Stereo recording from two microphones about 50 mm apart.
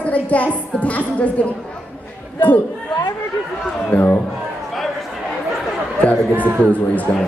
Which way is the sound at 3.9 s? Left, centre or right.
Left.